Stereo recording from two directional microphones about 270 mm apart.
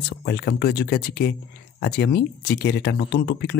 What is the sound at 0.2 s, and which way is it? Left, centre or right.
Speech, left.